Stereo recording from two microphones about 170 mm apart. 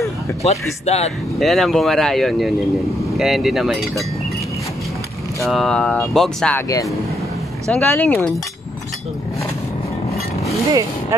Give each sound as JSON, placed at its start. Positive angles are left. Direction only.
{"t": 0.5, "sound": "speech", "side_deg": 40}
{"t": 1.4, "sound": "speech", "side_deg": 0}
{"t": 5.4, "sound": "speech", "side_deg": 0}
{"t": 6.5, "sound": "speech", "side_deg": 20}
{"t": 10.7, "sound": "speech", "side_deg": -20}